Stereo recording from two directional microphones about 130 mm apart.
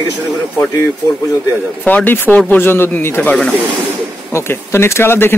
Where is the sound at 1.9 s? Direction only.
15° left (ahead or behind).